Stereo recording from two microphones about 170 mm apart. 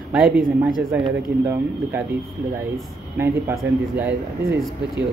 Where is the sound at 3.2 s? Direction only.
15° right (ahead or behind).